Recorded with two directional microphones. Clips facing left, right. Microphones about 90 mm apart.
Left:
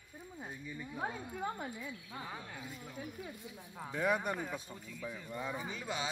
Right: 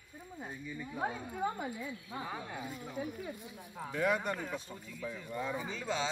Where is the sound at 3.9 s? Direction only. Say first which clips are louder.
Right 1 dB; 15° left (ahead or behind).